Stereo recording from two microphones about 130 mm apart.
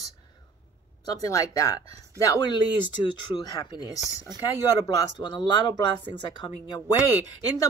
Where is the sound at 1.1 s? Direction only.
25° left (ahead or behind).